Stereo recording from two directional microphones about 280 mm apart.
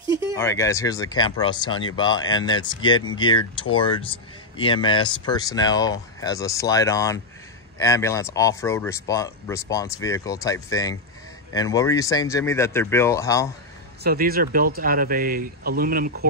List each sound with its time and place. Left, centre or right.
0.4 s speech: centre
14.0 s speech: right